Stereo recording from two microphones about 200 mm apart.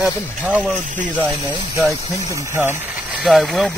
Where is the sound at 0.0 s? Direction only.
5° right (ahead or behind).